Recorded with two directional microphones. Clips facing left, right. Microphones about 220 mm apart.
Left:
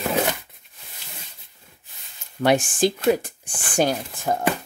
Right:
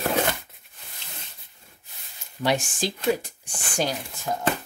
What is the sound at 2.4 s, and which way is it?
Speech, 55° left (ahead or behind).